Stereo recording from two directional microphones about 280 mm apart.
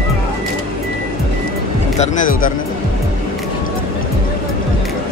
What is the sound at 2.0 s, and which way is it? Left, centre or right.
Speech, left.